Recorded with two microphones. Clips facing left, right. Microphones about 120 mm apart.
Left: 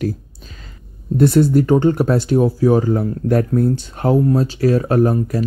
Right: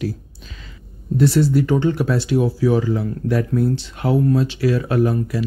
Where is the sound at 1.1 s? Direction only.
50° left (ahead or behind).